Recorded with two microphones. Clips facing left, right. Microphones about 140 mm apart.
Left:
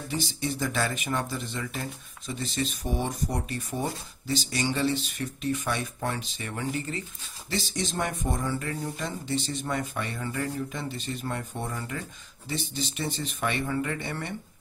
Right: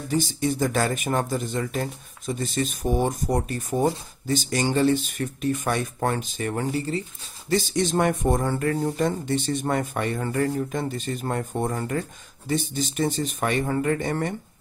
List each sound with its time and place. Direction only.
0.1 s speech: 45° right (ahead or behind)
7.4 s speech: 50° right (ahead or behind)